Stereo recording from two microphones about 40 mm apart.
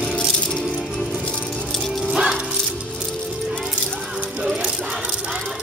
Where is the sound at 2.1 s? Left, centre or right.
Centre.